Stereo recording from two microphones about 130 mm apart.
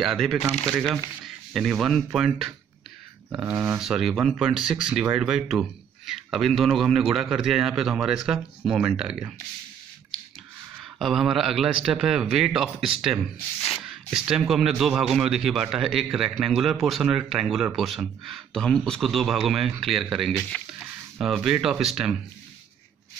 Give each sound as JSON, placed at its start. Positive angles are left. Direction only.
{"t": 0.0, "sound": "speech", "side_deg": 0}
{"t": 3.4, "sound": "speech", "side_deg": -20}
{"t": 3.8, "sound": "speech", "side_deg": 0}
{"t": 10.8, "sound": "speech", "side_deg": 0}
{"t": 13.6, "sound": "a sound", "side_deg": 45}
{"t": 13.8, "sound": "speech", "side_deg": -5}